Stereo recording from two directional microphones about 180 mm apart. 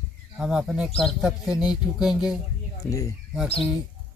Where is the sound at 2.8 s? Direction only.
15° left (ahead or behind).